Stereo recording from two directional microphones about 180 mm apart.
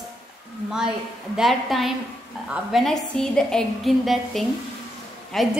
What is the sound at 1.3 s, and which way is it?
A woman's voice, centre (ahead or behind).